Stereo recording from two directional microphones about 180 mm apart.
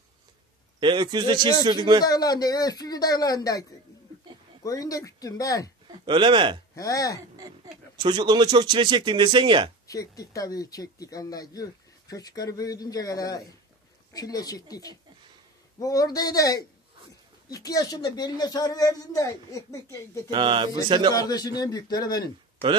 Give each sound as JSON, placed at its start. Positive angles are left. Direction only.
{"t": 0.7, "sound": "speech", "side_deg": -25}
{"t": 2.0, "sound": "speech", "side_deg": 20}
{"t": 4.6, "sound": "speech", "side_deg": 20}
{"t": 5.9, "sound": "speech", "side_deg": -25}
{"t": 6.7, "sound": "speech", "side_deg": 20}
{"t": 7.2, "sound": "a sound", "side_deg": -20}
{"t": 8.0, "sound": "speech", "side_deg": -25}
{"t": 9.8, "sound": "speech", "side_deg": 20}
{"t": 20.2, "sound": "speech", "side_deg": -25}
{"t": 21.1, "sound": "speech", "side_deg": 20}